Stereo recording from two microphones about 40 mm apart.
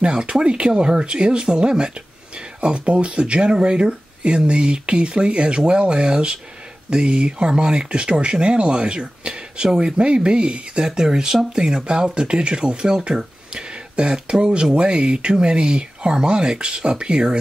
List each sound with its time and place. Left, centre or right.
0.0 s speech: right
10.9 s speech: centre